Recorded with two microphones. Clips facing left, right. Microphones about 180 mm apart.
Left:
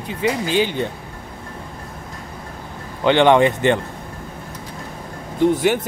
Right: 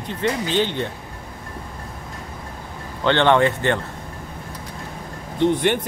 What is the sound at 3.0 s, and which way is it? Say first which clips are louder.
Speech: left 3 dB; 15° left (ahead or behind).